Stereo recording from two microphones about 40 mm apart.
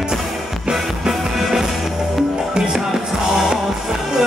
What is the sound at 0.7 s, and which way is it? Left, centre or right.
Music, centre.